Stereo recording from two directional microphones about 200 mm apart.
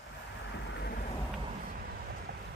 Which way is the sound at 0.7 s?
55° left (ahead or behind).